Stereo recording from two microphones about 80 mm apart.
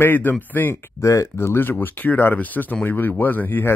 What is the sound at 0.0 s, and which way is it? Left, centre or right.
Speech, left.